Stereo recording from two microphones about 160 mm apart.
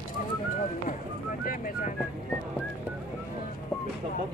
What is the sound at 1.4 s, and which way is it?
Music, 60° left (ahead or behind).